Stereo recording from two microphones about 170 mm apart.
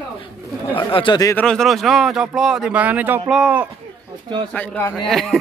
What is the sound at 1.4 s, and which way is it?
Speech, 5° left (ahead or behind).